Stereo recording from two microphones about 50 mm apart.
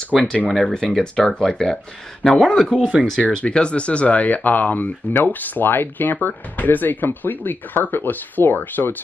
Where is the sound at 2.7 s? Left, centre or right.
Right.